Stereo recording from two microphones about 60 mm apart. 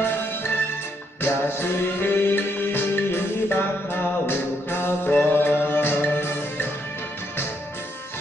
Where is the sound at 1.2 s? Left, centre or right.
Left.